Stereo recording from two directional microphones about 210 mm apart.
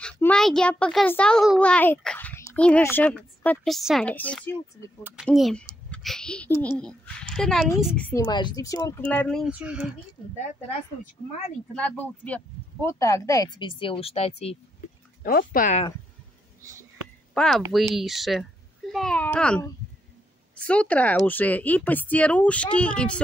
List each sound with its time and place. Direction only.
0.0 s a child's voice: 5° left (ahead or behind)
8.3 s speech: 20° left (ahead or behind); by 9.9 s 5° right (ahead or behind)
11.7 s speech: 5° left (ahead or behind); by 14.6 s 30° left (ahead or behind)
15.2 s speech: 45° left (ahead or behind)
17.3 s a child's voice: 5° left (ahead or behind)